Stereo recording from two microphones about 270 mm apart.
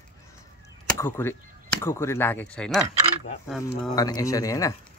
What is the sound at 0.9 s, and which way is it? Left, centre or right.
Speech, centre.